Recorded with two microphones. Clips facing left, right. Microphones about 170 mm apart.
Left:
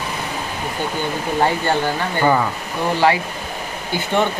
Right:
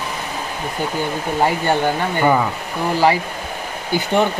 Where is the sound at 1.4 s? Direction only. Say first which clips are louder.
Right 1 dB; 15° right (ahead or behind).